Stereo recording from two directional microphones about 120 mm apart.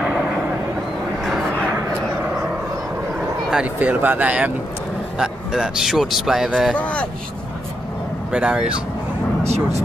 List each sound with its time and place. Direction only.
1.2 s a sound: 5° right (ahead or behind)
3.2 s speech: 5° right (ahead or behind)
6.7 s speech: 10° left (ahead or behind)
8.3 s speech: 10° right (ahead or behind)
9.4 s speech: 65° right (ahead or behind)